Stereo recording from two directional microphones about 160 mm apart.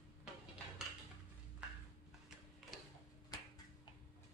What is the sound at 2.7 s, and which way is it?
Printer, centre (ahead or behind).